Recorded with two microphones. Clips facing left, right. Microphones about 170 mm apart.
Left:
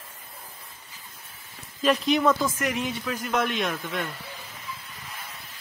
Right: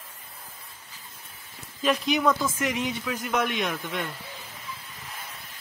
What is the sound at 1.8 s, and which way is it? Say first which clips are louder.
A man's voice: left 2 dB; centre (ahead or behind).